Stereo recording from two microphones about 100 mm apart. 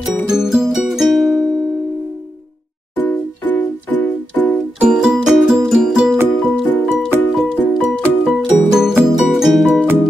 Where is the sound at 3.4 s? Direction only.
15° left (ahead or behind).